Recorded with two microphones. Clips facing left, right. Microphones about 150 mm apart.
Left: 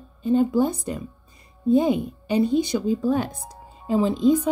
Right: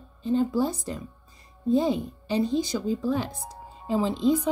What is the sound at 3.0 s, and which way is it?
Speech, 50° left (ahead or behind).